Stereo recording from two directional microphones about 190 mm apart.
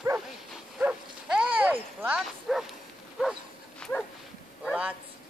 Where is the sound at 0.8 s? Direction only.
5° right (ahead or behind).